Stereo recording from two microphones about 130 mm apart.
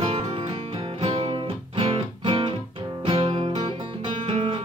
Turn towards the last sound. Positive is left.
turn(degrees=-40)  # may be behind; listen again after turning